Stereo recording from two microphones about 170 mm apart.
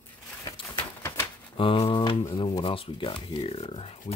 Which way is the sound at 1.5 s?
35° left (ahead or behind).